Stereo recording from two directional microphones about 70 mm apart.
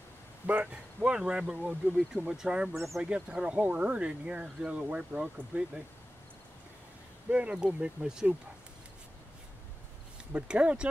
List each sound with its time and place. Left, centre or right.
1.0 s speech: centre
7.2 s speech: right
10.3 s speech: centre